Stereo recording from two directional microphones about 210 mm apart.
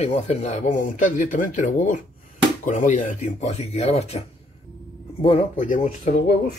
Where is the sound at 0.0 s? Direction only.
30° left (ahead or behind).